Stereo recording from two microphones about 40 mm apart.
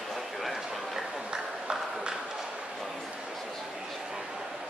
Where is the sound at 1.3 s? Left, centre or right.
Centre.